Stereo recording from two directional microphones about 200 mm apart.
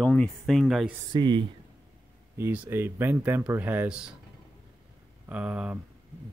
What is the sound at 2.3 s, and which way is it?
Speech, 10° right (ahead or behind).